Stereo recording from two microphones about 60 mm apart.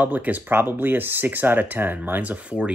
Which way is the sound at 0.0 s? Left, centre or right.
Right.